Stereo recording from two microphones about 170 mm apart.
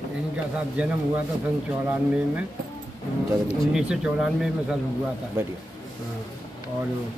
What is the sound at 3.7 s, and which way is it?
Speech, 5° right (ahead or behind).